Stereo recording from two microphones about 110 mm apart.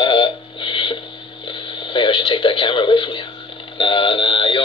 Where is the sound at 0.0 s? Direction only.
50° left (ahead or behind).